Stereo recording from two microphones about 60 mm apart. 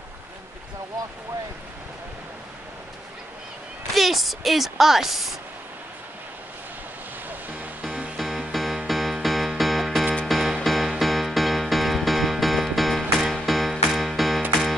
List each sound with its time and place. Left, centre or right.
3.9 s a woman's voice: centre
7.2 s music: right
7.8 s music: centre
8.2 s music: centre